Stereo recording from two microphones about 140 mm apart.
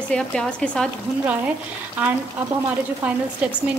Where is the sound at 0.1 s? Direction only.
5° left (ahead or behind).